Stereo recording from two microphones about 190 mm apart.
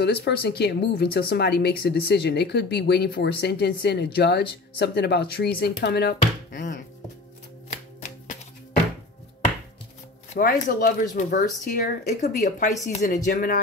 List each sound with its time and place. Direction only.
0.0 s speech: 55° left (ahead or behind)
10.4 s speech: 50° left (ahead or behind)